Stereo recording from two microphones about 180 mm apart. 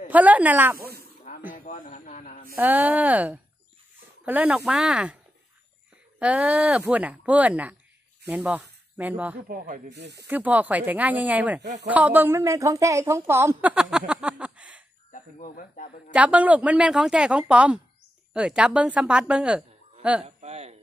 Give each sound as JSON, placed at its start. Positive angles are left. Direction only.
{"t": 0.1, "sound": "a woman's voice", "side_deg": -10}
{"t": 0.7, "sound": "a sound", "side_deg": -60}
{"t": 1.5, "sound": "a sound", "side_deg": 50}
{"t": 2.5, "sound": "a woman's voice", "side_deg": -10}
{"t": 6.1, "sound": "a woman's voice", "side_deg": -5}
{"t": 9.8, "sound": "speech", "side_deg": -70}
{"t": 10.2, "sound": "a woman's voice", "side_deg": -10}
{"t": 15.1, "sound": "speech", "side_deg": 45}
{"t": 16.1, "sound": "a woman's voice", "side_deg": -10}
{"t": 20.2, "sound": "a sound", "side_deg": -35}